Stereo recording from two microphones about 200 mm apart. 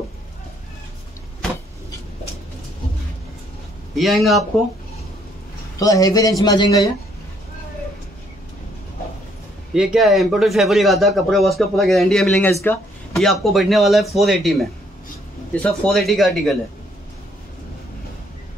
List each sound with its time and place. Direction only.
3.9 s a man's voice: centre (ahead or behind)
5.8 s a man's voice: 15° left (ahead or behind)
9.8 s a man's voice: centre (ahead or behind)